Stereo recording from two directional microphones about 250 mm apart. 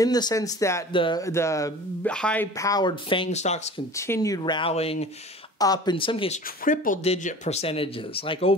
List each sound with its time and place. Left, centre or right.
0.0 s speech: centre
3.9 s speech: centre